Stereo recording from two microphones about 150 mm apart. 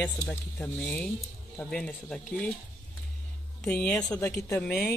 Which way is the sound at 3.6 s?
10° left (ahead or behind).